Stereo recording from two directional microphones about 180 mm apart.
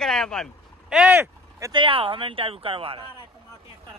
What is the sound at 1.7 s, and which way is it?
Speech, 30° right (ahead or behind).